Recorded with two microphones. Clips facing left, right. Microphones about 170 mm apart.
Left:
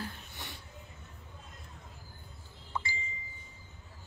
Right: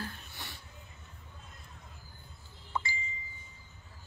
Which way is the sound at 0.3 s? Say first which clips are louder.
Left 1 dB; 20° left (ahead or behind).